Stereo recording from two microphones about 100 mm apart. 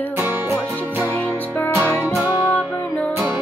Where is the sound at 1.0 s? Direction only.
20° left (ahead or behind).